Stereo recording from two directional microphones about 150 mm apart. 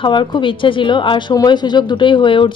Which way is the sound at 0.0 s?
30° left (ahead or behind).